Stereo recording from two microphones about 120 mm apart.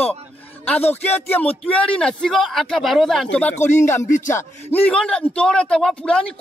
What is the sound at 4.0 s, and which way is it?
Speech, 90° left.